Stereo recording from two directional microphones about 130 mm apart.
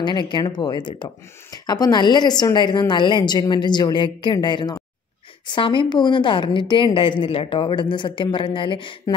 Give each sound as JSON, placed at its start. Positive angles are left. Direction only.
{"t": 0.0, "sound": "a woman's voice", "side_deg": 35}